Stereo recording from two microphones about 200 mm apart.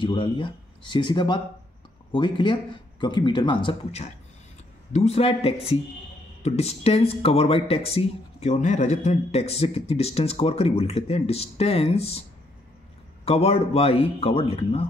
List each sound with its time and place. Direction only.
0.0 s speech: 25° left (ahead or behind)
13.2 s speech: 30° left (ahead or behind)